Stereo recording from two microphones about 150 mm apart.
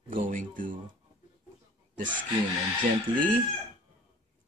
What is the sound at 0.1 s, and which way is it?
Speech, 60° right (ahead or behind).